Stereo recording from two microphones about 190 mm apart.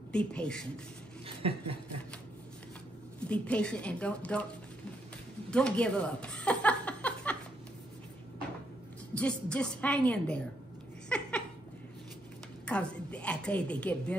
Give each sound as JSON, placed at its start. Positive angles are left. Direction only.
{"t": 0.1, "sound": "speech", "side_deg": 5}
{"t": 1.2, "sound": "a sound", "side_deg": -30}
{"t": 3.2, "sound": "a woman's voice", "side_deg": 5}
{"t": 5.5, "sound": "chuckle", "side_deg": 5}
{"t": 9.1, "sound": "a woman's voice", "side_deg": 5}
{"t": 11.1, "sound": "laughter", "side_deg": 5}
{"t": 12.6, "sound": "a woman's voice", "side_deg": 5}